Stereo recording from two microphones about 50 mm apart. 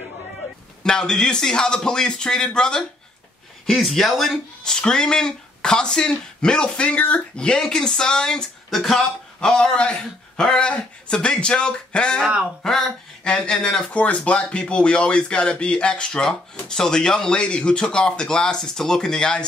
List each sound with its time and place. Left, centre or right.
0.8 s speech: centre
3.6 s speech: centre
4.8 s speech: centre
8.6 s speech: centre
9.4 s speech: centre
12.6 s speech: centre
13.8 s speech: left